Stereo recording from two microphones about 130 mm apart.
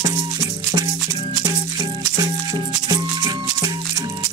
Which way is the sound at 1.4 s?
30° right (ahead or behind).